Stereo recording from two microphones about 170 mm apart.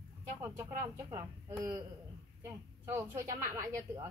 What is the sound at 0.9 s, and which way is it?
A woman's voice, 20° right (ahead or behind).